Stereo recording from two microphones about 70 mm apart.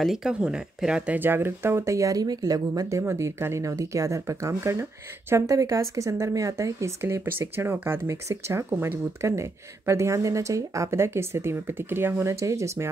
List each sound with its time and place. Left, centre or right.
0.0 s speech: centre
1.2 s speech: right
1.9 s speech: right
2.9 s speech: right
3.6 s speech: right
8.6 s speech: right
9.2 s speech: right
12.3 s speech: right